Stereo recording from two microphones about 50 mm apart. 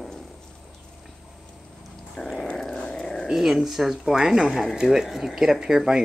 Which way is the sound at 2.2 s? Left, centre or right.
Centre.